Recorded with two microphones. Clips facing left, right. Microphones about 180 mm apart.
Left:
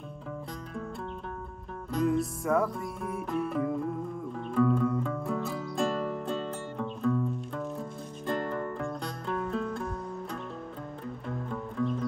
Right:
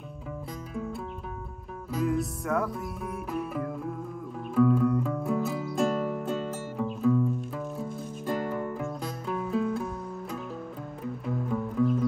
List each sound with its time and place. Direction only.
1.9 s music: centre (ahead or behind)
11.2 s music: 5° right (ahead or behind)